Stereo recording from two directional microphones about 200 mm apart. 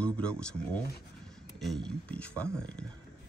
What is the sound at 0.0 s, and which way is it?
Speech, 5° left (ahead or behind).